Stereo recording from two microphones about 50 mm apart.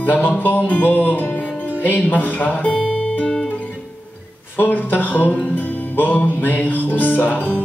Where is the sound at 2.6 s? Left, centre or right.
Left.